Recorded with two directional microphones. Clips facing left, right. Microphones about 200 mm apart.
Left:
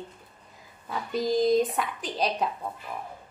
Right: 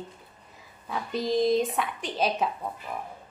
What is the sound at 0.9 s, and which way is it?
A woman's voice, centre (ahead or behind).